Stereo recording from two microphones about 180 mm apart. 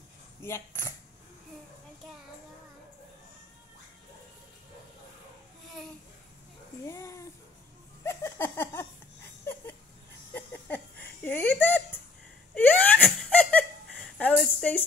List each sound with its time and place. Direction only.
0.4 s speech: 15° left (ahead or behind)
6.9 s a child's voice: 15° left (ahead or behind)
8.0 s a sound: 15° left (ahead or behind)
10.3 s a sound: 10° left (ahead or behind)
12.5 s wail: 10° left (ahead or behind)
14.1 s speech: 5° left (ahead or behind)